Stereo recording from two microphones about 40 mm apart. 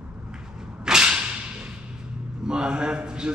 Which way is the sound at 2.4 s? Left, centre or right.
Centre.